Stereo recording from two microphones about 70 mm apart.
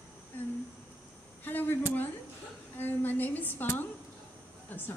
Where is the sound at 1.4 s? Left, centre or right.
Left.